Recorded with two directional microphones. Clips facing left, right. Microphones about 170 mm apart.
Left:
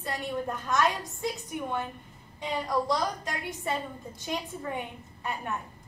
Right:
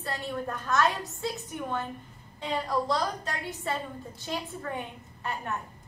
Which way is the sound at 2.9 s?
15° left (ahead or behind).